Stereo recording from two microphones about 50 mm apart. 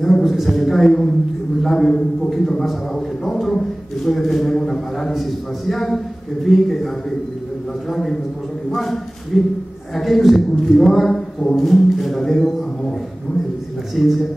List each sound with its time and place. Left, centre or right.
0.0 s a sound: centre
1.6 s a man's voice: centre
7.9 s a man's voice: centre
13.9 s a man's voice: centre